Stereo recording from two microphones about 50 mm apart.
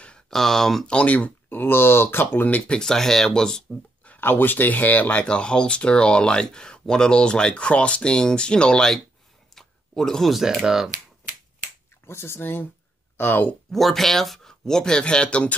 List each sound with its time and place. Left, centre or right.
0.3 s speech: centre
0.8 s speech: left
1.5 s speech: left
2.7 s speech: centre
4.2 s speech: left
5.2 s speech: centre
9.6 s a sound: centre
10.3 s speech: centre
12.1 s speech: left
13.2 s speech: left
13.7 s speech: centre; by 15.5 s left